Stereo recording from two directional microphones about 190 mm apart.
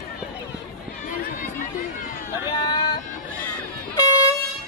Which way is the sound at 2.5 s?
20° left (ahead or behind).